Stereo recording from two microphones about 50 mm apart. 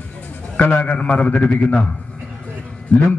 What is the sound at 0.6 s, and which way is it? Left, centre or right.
A man's voice, left.